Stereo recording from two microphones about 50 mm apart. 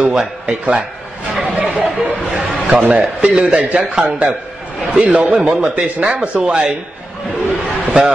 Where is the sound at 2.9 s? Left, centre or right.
Right.